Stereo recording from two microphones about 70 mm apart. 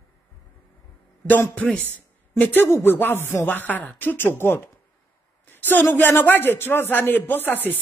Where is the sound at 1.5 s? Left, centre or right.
Centre.